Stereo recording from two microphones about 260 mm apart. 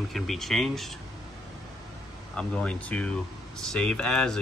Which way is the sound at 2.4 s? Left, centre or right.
Centre.